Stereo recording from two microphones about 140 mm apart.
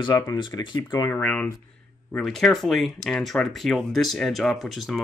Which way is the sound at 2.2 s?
Centre (ahead or behind).